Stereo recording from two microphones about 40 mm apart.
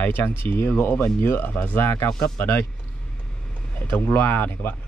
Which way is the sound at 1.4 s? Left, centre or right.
Left.